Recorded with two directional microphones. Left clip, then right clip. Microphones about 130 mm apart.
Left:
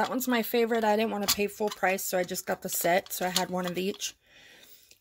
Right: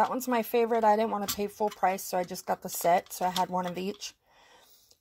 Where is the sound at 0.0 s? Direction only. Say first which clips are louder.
Right 1 dB; 25° left (ahead or behind).